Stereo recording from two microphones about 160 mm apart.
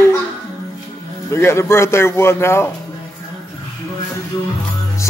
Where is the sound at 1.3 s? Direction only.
15° left (ahead or behind).